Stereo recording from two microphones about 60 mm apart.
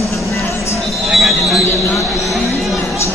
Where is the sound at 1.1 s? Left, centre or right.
Centre.